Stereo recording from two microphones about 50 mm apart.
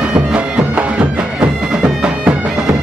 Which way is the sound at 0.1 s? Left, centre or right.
Right.